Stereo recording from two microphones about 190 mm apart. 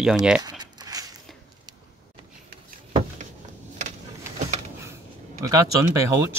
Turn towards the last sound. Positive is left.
turn(degrees=-15)  # may be behind; listen again after turning